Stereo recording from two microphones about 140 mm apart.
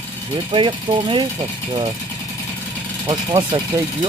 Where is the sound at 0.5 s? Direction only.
35° right (ahead or behind).